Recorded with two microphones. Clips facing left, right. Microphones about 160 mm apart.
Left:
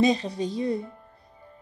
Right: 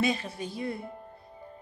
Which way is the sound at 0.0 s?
35° left (ahead or behind).